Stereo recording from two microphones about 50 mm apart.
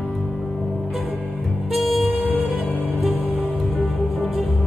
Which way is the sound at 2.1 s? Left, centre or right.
Right.